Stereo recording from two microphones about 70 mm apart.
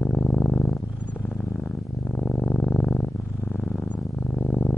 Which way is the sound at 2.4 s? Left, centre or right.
Centre.